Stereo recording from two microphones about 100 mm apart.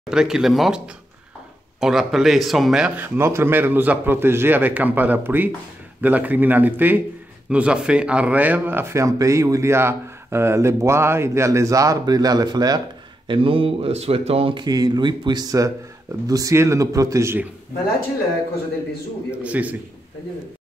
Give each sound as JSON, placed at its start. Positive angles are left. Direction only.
{"t": 0.1, "sound": "speech", "side_deg": -5}
{"t": 3.0, "sound": "speech", "side_deg": -25}
{"t": 13.3, "sound": "speech", "side_deg": -60}
{"t": 14.7, "sound": "speech", "side_deg": -45}
{"t": 19.4, "sound": "a man's voice", "side_deg": -15}